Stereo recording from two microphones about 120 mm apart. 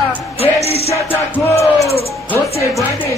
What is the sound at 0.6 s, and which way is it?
Music, 60° left (ahead or behind).